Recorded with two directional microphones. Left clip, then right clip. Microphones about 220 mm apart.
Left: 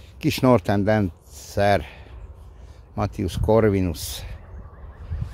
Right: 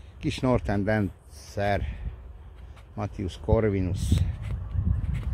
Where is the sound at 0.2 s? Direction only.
30° left (ahead or behind).